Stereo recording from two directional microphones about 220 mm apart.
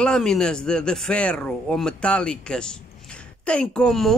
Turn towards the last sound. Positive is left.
turn(degrees=0)  # may be behind; listen again after turning